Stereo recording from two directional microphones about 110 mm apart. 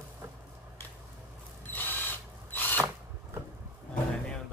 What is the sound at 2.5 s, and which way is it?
Drill, 15° left (ahead or behind).